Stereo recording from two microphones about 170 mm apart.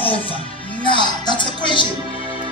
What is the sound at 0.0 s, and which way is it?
Music, 30° left (ahead or behind).